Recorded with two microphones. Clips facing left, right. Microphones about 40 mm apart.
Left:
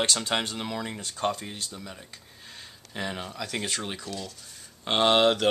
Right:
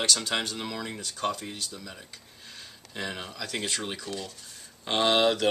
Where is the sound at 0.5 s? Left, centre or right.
Centre.